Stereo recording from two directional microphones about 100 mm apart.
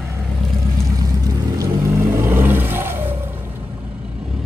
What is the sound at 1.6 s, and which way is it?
Vehicle, 25° right (ahead or behind).